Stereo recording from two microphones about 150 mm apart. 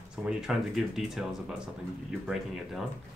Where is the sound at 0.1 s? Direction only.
5° right (ahead or behind).